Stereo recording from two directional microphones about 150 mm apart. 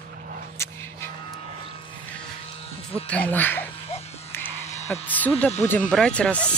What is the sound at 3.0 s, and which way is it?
Speech, 10° left (ahead or behind).